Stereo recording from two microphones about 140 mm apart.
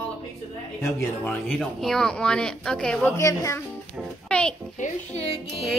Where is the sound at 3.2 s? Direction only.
20° left (ahead or behind).